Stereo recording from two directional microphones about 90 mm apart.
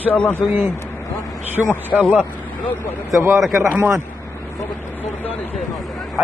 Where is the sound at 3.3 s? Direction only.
Centre (ahead or behind).